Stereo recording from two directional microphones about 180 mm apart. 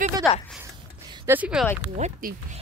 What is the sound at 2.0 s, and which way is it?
Speech, 50° right (ahead or behind).